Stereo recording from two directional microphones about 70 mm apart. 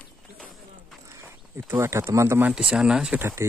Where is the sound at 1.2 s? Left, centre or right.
Right.